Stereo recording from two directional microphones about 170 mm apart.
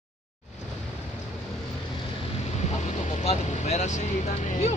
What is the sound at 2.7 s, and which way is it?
Speech, 45° left (ahead or behind).